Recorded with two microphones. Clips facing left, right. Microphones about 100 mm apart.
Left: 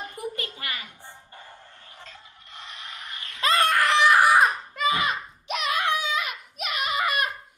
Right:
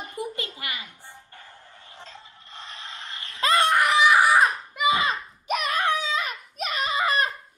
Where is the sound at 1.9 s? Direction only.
30° right (ahead or behind).